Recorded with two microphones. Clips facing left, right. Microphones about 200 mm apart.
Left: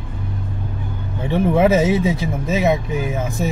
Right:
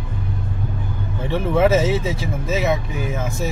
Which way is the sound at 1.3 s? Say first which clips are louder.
Left 2 dB; 15° left (ahead or behind).